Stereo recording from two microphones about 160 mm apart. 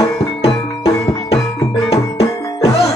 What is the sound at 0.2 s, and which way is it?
Music, 40° left (ahead or behind).